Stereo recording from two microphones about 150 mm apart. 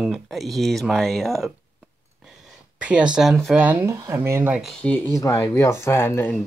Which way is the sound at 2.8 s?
5° right (ahead or behind).